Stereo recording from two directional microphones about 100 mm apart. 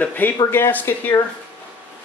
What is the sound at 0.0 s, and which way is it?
Speech, 15° left (ahead or behind).